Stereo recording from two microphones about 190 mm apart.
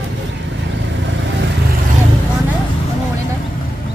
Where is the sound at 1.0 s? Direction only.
70° right (ahead or behind).